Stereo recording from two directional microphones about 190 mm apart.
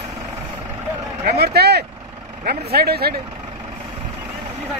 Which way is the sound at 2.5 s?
55° right (ahead or behind).